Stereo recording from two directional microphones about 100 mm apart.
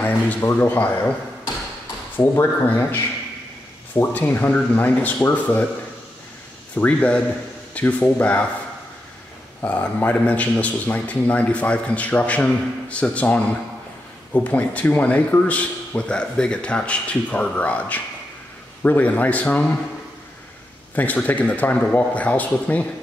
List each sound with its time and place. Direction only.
0.0 s speech: 15° left (ahead or behind)
2.1 s speech: 20° left (ahead or behind)
6.8 s speech: 10° left (ahead or behind)
9.6 s speech: 15° left (ahead or behind)
20.9 s speech: 15° left (ahead or behind)